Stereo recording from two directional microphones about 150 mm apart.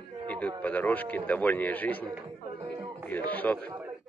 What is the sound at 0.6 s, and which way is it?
A man's voice, 10° left (ahead or behind).